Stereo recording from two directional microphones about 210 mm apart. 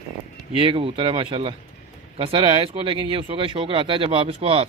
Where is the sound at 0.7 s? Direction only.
25° right (ahead or behind).